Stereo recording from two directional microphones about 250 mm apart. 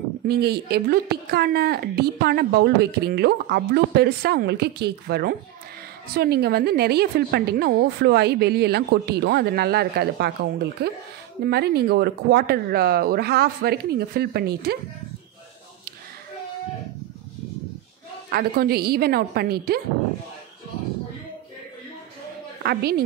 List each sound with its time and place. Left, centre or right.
0.3 s speech: right
18.3 s speech: right
22.6 s a woman's voice: right